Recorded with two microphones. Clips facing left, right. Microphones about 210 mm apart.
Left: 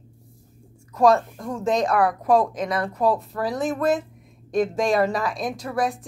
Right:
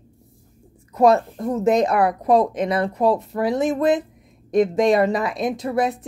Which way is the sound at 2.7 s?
25° right (ahead or behind).